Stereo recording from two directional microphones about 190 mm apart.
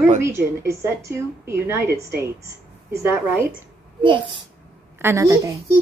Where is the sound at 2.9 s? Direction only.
15° right (ahead or behind).